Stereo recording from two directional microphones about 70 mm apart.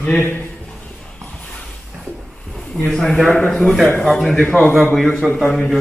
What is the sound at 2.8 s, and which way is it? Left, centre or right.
A man's voice, centre.